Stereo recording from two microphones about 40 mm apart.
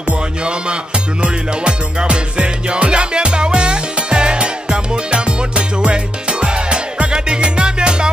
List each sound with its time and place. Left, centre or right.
1.2 s music: right
6.4 s music: right